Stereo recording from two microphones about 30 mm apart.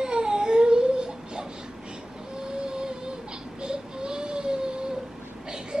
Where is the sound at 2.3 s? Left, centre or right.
Right.